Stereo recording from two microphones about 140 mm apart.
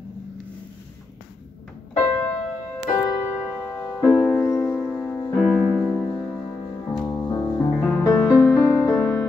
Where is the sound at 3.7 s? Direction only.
20° left (ahead or behind).